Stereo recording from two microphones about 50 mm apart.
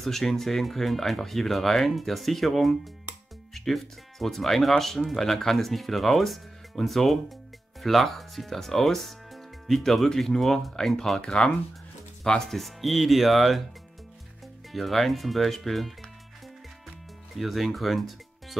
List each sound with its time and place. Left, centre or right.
0.0 s speech: centre
11.1 s speech: centre
14.7 s speech: centre
17.4 s speech: centre